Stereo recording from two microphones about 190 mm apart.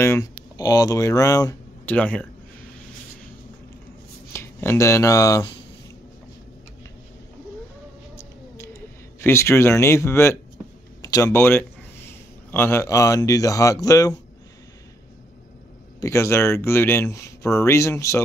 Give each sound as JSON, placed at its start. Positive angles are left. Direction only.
{"t": 0.0, "sound": "speech", "side_deg": 15}
{"t": 4.3, "sound": "speech", "side_deg": 15}
{"t": 9.2, "sound": "speech", "side_deg": 15}
{"t": 16.0, "sound": "speech", "side_deg": 15}